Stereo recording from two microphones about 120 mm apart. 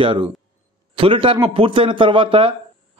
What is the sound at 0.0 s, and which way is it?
A man's voice, 45° right (ahead or behind).